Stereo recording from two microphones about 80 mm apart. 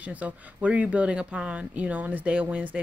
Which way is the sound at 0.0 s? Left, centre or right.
Centre.